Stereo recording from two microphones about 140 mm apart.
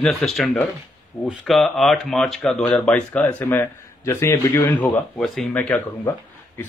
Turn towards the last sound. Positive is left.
turn(degrees=10)  # may be behind; listen again after turning